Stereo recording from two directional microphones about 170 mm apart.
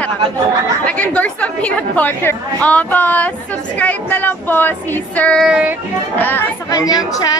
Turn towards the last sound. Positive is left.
turn(degrees=10)  # may be behind; listen again after turning